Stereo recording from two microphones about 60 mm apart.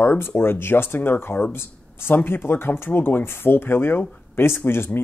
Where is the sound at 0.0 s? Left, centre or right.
Left.